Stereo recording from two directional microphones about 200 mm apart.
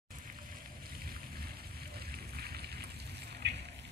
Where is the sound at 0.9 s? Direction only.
50° right (ahead or behind).